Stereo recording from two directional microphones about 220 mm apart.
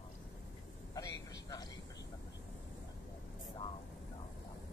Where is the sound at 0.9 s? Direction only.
15° left (ahead or behind).